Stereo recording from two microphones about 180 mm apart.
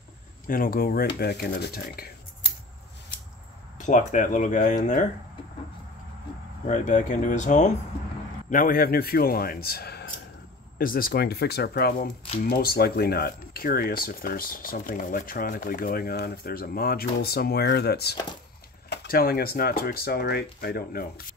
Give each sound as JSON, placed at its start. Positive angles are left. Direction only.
{"t": 0.5, "sound": "speech", "side_deg": 55}
{"t": 3.7, "sound": "speech", "side_deg": 45}
{"t": 6.7, "sound": "speech", "side_deg": 40}